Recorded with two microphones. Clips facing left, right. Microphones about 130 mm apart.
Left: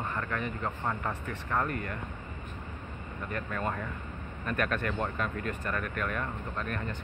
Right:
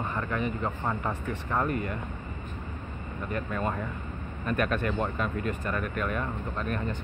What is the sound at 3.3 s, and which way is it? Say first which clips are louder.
Speech: right 3 dB; 20° right (ahead or behind).